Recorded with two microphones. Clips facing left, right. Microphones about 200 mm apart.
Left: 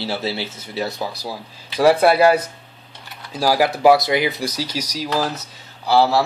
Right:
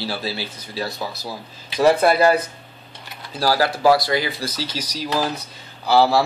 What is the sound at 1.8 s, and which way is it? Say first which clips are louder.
Speech: left 2 dB; 10° left (ahead or behind).